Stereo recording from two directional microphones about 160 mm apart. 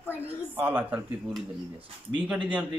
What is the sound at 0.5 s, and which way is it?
Speech, 10° right (ahead or behind).